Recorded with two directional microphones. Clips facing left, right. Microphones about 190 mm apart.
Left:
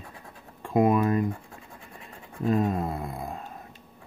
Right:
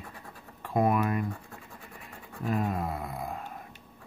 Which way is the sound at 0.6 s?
20° left (ahead or behind).